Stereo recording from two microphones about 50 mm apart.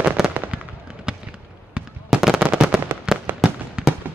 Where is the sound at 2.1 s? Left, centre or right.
Centre.